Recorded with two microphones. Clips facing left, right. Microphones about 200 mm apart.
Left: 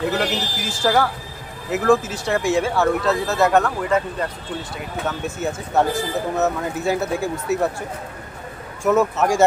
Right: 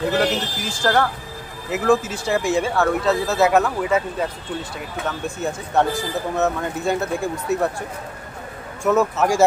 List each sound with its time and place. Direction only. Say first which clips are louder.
0.2 s speech: right 2 dB; 5° left (ahead or behind)
8.8 s speech: even; centre (ahead or behind)